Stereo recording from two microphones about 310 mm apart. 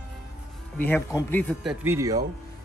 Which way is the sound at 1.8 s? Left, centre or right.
Centre.